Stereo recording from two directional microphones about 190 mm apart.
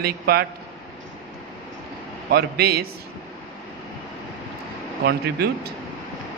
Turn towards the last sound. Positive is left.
turn(degrees=-55)  # may be behind; listen again after turning